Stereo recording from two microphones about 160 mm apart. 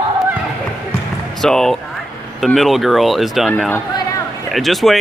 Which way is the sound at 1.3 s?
Centre (ahead or behind).